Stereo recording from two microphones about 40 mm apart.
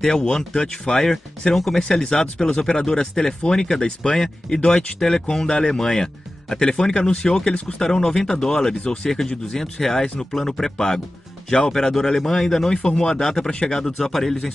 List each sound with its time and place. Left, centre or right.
0.2 s speech: centre
1.8 s speech: centre